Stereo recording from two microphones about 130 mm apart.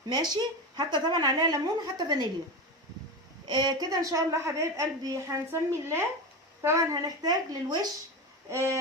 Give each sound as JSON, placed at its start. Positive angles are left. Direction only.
{"t": 0.1, "sound": "a woman's voice", "side_deg": -35}
{"t": 3.4, "sound": "a woman's voice", "side_deg": -30}
{"t": 8.5, "sound": "a woman's voice", "side_deg": -20}